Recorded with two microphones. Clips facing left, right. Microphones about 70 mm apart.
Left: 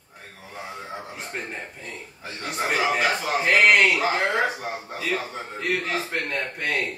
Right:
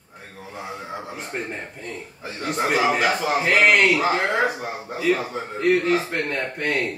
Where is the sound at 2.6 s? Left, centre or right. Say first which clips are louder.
Right 3 dB; centre.